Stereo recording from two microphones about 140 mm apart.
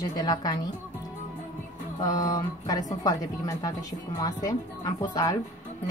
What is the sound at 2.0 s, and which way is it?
A woman's voice, 30° left (ahead or behind).